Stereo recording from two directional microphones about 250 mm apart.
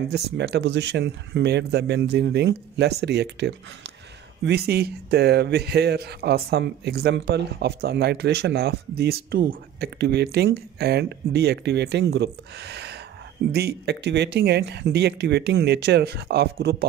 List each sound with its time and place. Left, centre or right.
0.1 s speech: right